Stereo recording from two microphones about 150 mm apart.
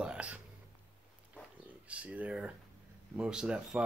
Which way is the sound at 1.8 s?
10° right (ahead or behind).